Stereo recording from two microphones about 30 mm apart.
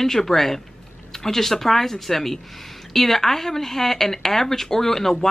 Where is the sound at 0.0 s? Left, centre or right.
Centre.